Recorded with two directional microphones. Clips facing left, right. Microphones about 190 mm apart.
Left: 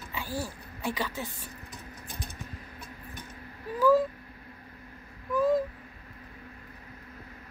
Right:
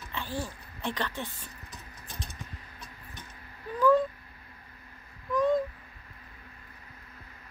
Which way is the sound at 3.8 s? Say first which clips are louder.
Left 1 dB; 5° left (ahead or behind).